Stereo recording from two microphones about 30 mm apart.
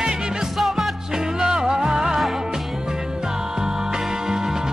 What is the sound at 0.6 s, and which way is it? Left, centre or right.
Music, centre.